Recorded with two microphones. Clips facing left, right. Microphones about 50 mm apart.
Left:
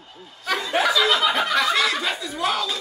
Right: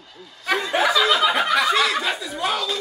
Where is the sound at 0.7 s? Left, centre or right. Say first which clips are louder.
Even; centre.